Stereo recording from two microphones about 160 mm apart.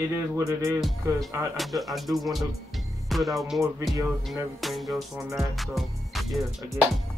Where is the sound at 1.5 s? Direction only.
Centre (ahead or behind).